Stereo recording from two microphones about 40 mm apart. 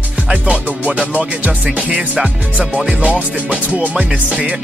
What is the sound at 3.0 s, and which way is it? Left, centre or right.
Music, right.